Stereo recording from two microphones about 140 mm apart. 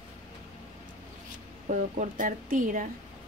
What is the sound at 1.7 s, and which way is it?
Speech, 65° right (ahead or behind).